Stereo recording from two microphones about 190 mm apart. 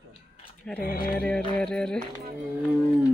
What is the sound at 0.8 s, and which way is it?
Music, 50° left (ahead or behind).